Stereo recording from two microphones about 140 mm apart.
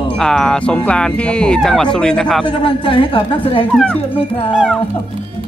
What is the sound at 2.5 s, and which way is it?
Speech, 40° left (ahead or behind).